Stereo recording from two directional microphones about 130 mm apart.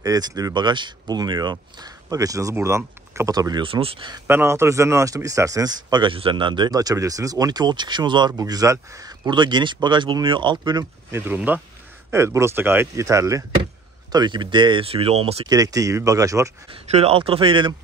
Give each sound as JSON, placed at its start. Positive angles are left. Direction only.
{"t": 0.0, "sound": "speech", "side_deg": -30}
{"t": 3.6, "sound": "speech", "side_deg": -45}
{"t": 4.3, "sound": "speech", "side_deg": -20}
{"t": 11.1, "sound": "speech", "side_deg": -15}
{"t": 14.1, "sound": "speech", "side_deg": -35}
{"t": 15.4, "sound": "speech", "side_deg": -30}
{"t": 16.7, "sound": "speech", "side_deg": -50}